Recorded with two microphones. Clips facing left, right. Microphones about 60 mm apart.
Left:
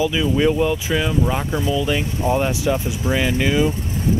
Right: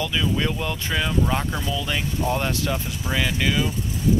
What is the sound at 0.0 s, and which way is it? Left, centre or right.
Speech, centre.